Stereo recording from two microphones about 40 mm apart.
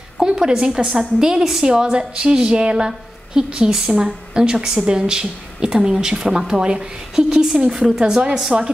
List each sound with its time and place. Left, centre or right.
0.2 s speech: centre
1.7 s a woman's voice: right; by 8.0 s centre
8.1 s a woman's voice: centre